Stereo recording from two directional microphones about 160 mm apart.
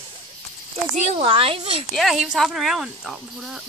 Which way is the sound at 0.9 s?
40° right (ahead or behind).